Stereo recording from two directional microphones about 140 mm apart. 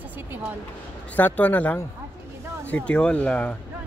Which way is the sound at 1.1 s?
10° left (ahead or behind).